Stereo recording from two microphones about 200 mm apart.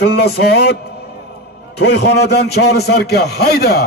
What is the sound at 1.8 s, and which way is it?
A man's voice, 55° left (ahead or behind).